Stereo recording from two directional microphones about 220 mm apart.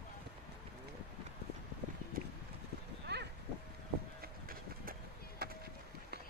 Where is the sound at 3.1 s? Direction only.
50° right (ahead or behind).